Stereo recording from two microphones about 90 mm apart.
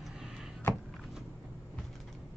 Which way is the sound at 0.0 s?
5° right (ahead or behind).